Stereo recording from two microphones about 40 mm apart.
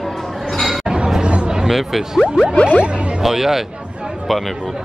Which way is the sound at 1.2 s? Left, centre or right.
Right.